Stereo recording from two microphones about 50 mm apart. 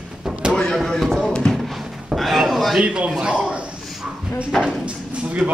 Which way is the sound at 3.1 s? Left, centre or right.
Right.